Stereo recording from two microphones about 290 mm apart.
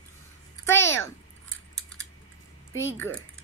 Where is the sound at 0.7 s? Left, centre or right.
Centre.